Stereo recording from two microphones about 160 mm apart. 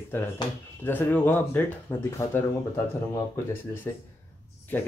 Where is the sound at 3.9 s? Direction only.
20° left (ahead or behind).